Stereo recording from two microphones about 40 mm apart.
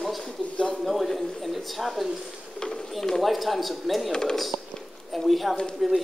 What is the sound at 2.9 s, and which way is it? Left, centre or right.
Speech, centre.